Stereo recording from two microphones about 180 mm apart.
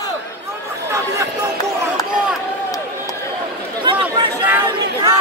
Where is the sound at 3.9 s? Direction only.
30° right (ahead or behind).